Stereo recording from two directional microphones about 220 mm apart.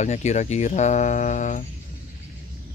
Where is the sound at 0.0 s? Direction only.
30° left (ahead or behind).